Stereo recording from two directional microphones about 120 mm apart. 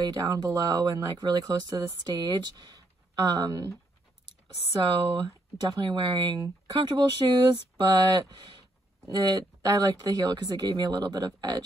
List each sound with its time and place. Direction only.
0.0 s speech: 30° right (ahead or behind)
4.7 s speech: 30° right (ahead or behind)
6.4 s speech: 30° right (ahead or behind)